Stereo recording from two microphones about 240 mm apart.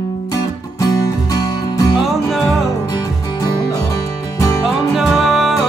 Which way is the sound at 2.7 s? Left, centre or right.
Centre.